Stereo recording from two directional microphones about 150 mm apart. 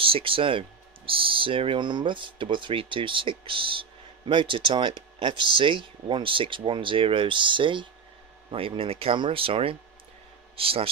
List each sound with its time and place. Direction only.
0.0 s speech: 35° right (ahead or behind)